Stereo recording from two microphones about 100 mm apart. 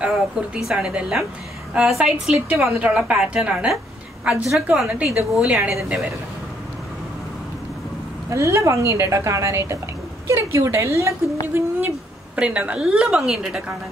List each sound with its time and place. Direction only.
0.0 s a woman's voice: 5° right (ahead or behind)
8.3 s a woman's voice: 30° right (ahead or behind); by 13.7 s 10° right (ahead or behind)